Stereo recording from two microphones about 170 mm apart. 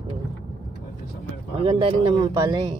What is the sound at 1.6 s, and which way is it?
Speech, 30° right (ahead or behind).